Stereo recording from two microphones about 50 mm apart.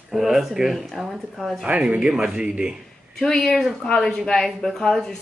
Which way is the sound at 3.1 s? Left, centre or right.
Centre.